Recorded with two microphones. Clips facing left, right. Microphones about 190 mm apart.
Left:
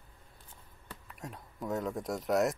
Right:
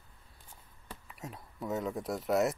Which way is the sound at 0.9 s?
Centre (ahead or behind).